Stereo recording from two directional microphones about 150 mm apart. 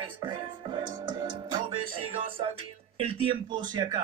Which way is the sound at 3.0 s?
40° right (ahead or behind).